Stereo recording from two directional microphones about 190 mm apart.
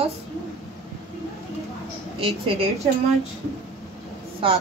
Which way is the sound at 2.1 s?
30° right (ahead or behind).